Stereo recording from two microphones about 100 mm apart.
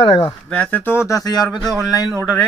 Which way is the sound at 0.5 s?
15° left (ahead or behind).